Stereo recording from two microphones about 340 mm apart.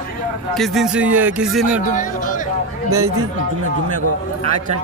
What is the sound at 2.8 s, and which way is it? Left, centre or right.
Speech, right.